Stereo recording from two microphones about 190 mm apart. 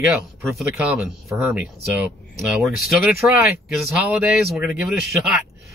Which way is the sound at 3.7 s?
Centre (ahead or behind).